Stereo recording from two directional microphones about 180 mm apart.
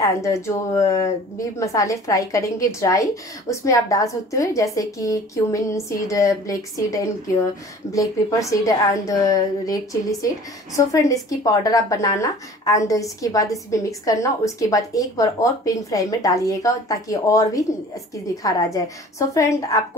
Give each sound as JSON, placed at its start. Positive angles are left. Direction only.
{"t": 0.0, "sound": "a woman's voice", "side_deg": 15}